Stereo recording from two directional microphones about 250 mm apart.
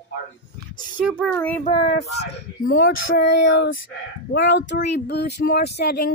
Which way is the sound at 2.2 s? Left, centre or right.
Left.